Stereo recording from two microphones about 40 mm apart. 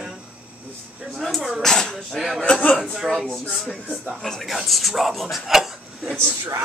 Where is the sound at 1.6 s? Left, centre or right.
Centre.